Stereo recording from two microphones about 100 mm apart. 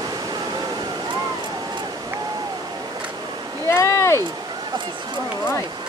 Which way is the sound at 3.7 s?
30° left (ahead or behind).